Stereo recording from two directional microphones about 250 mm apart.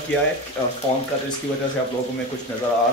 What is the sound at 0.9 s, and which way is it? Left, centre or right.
Speech, left.